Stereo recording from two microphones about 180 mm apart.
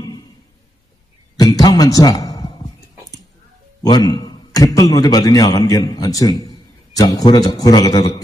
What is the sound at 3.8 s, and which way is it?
Mantra, 25° left (ahead or behind).